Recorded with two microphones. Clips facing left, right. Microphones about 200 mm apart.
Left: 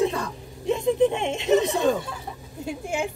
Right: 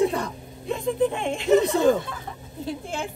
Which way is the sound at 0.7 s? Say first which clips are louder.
Left 3 dB; 25° left (ahead or behind).